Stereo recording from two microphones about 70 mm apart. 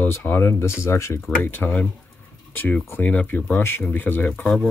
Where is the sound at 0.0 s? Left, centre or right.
Left.